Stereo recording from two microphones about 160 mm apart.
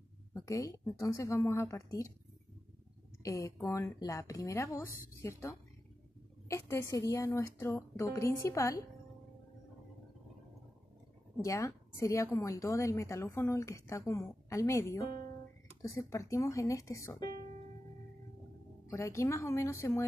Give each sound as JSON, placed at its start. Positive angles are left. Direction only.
{"t": 0.3, "sound": "a woman's voice", "side_deg": 20}
{"t": 3.2, "sound": "a woman's voice", "side_deg": 20}
{"t": 6.5, "sound": "a woman's voice", "side_deg": 15}
{"t": 11.4, "sound": "a woman's voice", "side_deg": 20}
{"t": 18.9, "sound": "a woman's voice", "side_deg": 20}